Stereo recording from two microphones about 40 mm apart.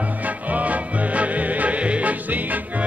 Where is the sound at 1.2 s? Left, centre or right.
Right.